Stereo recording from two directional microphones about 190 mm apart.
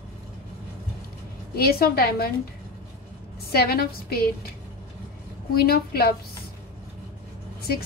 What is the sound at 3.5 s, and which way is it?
Speech, 55° left (ahead or behind).